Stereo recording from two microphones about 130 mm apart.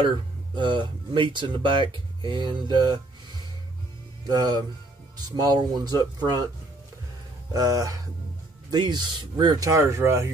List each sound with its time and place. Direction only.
0.6 s speech: 35° right (ahead or behind)
4.3 s speech: 30° right (ahead or behind)
7.5 s speech: 30° right (ahead or behind)